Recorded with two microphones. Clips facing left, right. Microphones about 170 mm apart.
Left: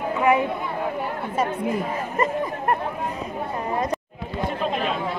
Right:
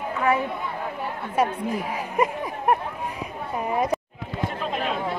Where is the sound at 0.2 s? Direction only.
20° left (ahead or behind).